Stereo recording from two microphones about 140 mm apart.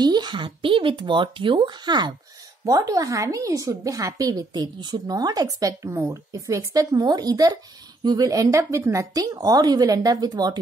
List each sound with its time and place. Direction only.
0.0 s a woman's voice: 30° right (ahead or behind)